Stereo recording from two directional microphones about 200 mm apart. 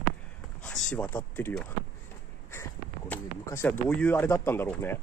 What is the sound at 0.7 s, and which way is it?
Speech, 5° left (ahead or behind).